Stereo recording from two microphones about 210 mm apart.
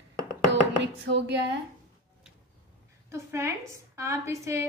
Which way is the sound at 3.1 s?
15° right (ahead or behind).